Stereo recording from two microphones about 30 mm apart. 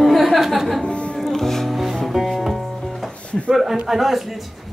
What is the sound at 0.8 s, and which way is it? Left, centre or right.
Speech, left.